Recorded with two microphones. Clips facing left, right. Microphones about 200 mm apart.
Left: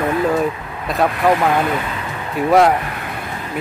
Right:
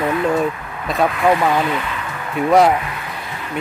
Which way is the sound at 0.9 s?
Centre (ahead or behind).